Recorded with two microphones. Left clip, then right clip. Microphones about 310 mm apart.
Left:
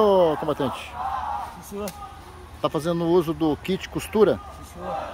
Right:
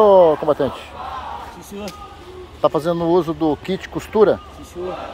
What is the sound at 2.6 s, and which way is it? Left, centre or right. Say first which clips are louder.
Speech: right 7 dB; centre.